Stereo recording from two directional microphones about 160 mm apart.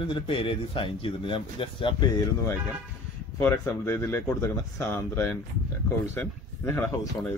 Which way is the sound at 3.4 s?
15° left (ahead or behind).